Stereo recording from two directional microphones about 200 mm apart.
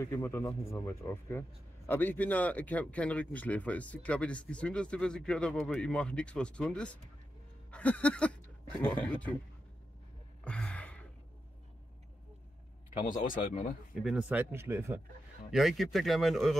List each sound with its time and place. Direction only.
0.0 s speech: 15° left (ahead or behind)
7.7 s a sound: 5° left (ahead or behind)
8.8 s speech: 5° left (ahead or behind)
10.4 s gasp: 5° left (ahead or behind)
13.3 s speech: 40° left (ahead or behind)
14.0 s speech: 5° right (ahead or behind)
15.5 s speech: centre (ahead or behind)